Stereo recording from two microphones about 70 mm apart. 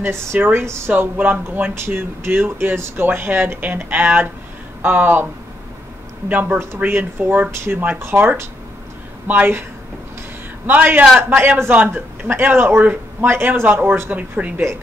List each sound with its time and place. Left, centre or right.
0.0 s speech: right
10.7 s speech: right